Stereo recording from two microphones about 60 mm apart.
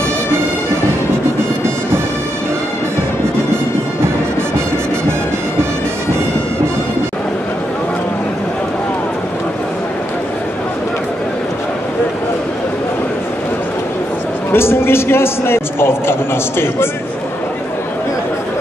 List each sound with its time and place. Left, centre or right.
14.5 s a man's voice: left